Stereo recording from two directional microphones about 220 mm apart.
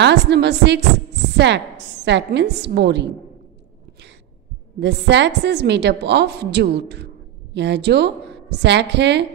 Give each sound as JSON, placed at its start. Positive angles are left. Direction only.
{"t": 0.0, "sound": "a woman's voice", "side_deg": -50}
{"t": 4.7, "sound": "a woman's voice", "side_deg": -50}